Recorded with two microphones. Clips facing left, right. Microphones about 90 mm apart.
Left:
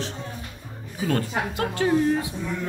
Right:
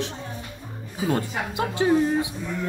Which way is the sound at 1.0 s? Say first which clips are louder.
Even; 20° right (ahead or behind).